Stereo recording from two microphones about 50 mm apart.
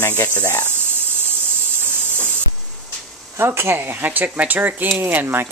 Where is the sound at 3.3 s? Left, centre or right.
Right.